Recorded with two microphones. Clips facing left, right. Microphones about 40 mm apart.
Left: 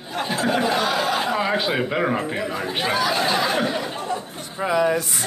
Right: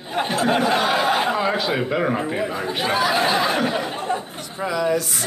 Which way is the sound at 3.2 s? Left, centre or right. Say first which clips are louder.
Right 1 dB; centre.